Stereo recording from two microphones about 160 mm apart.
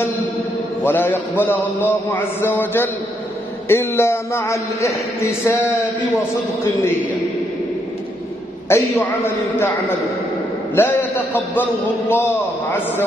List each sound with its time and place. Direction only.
0.8 s a man's voice: 15° left (ahead or behind)
8.6 s a man's voice: 15° left (ahead or behind)